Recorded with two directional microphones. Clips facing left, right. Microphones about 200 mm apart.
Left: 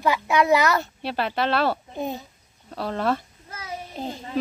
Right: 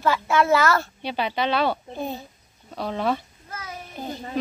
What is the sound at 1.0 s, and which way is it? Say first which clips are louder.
Speech: even; centre (ahead or behind).